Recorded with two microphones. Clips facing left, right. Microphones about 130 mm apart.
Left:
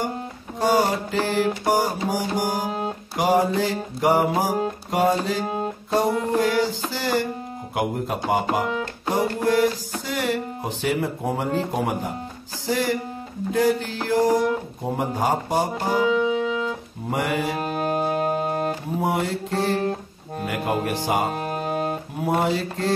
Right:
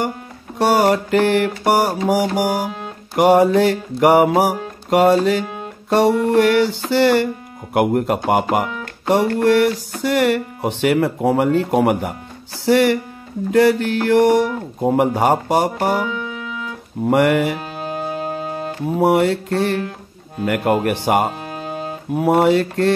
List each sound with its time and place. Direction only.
0.6 s music: 70° right (ahead or behind)
16.1 s music: 30° left (ahead or behind)
17.1 s music: 70° right (ahead or behind)
17.6 s music: 45° left (ahead or behind)
18.9 s music: 70° right (ahead or behind)
19.8 s music: 35° left (ahead or behind)
20.4 s speech: 65° right (ahead or behind)
21.5 s music: 45° left (ahead or behind)
22.2 s speech: 65° right (ahead or behind)